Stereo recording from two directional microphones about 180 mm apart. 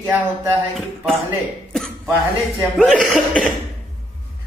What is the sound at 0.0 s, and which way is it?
Speech, 10° right (ahead or behind).